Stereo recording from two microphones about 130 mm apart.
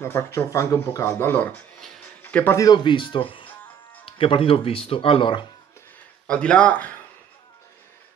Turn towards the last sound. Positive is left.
turn(degrees=10)  # may be behind; listen again after turning